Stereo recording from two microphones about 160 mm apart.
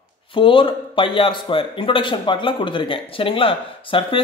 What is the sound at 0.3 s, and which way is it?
A man's voice, 30° left (ahead or behind).